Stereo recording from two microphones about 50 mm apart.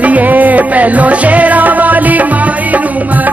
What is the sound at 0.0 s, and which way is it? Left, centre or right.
Music, right.